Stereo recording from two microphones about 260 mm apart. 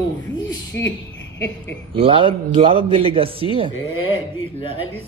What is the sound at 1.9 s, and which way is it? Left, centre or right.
A man's voice, centre.